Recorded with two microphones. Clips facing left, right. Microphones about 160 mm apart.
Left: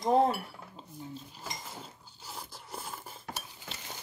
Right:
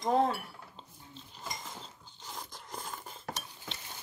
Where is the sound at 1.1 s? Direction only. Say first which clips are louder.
Left 1 dB; 5° left (ahead or behind).